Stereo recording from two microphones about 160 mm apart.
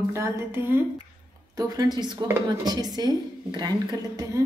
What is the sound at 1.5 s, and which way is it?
A woman's voice, 20° right (ahead or behind).